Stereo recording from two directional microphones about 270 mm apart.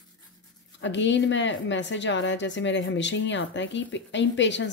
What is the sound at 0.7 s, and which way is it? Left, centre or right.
A woman's voice, left.